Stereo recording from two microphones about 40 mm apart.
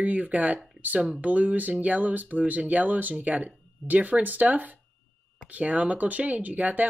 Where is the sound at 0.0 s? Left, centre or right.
Right.